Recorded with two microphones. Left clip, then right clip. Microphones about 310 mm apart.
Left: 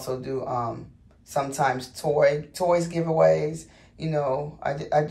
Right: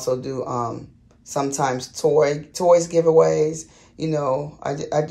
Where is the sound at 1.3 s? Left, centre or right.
Centre.